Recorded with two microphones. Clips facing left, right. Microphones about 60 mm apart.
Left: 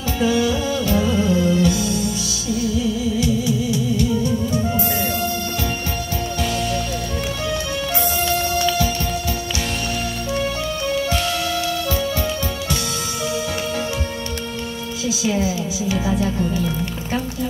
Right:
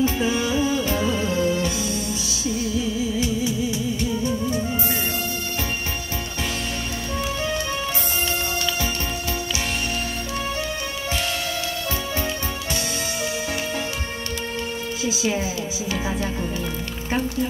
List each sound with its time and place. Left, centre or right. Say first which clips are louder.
0.0 s music: left 3 dB; right
3.2 s music: left 3 dB; right
15.2 s music: left 6 dB; right